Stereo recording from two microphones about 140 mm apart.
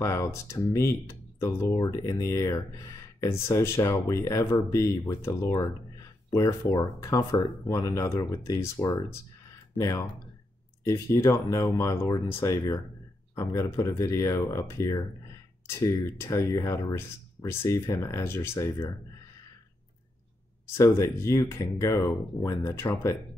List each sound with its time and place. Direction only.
0.0 s speech: 20° left (ahead or behind)
20.7 s speech: 20° left (ahead or behind)